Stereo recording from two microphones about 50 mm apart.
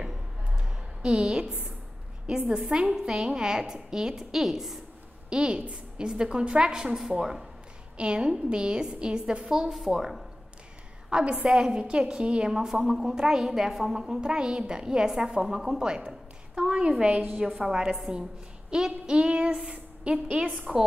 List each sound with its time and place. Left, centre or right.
1.0 s a woman's voice: centre
5.3 s a woman's voice: centre
9.5 s a woman's voice: centre
11.1 s a woman's voice: centre
14.0 s a woman's voice: centre